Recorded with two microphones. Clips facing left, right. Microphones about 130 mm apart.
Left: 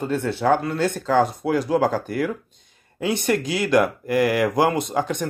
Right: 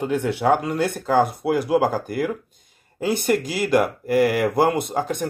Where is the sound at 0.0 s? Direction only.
15° right (ahead or behind).